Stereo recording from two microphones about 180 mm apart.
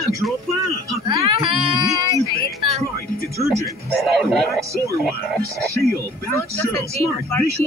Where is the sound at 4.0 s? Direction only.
Centre (ahead or behind).